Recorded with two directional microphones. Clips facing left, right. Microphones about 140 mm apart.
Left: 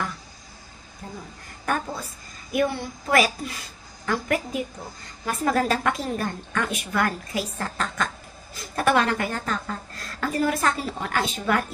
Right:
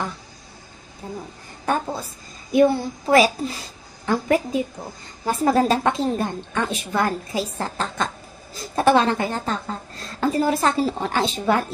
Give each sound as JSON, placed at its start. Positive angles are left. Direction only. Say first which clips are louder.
{"t": 1.0, "sound": "a woman's voice", "louder": "right 5 dB", "side_deg": -20}
{"t": 2.5, "sound": "a woman's voice", "louder": "right 7 dB", "side_deg": -30}